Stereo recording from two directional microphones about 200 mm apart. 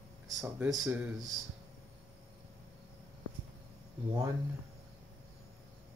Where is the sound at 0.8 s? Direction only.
10° right (ahead or behind).